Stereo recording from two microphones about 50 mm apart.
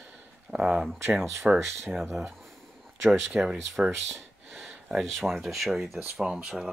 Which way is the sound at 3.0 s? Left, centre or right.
Centre.